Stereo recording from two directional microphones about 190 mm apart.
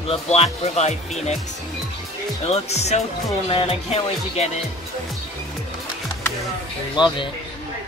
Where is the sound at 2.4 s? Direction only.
35° left (ahead or behind).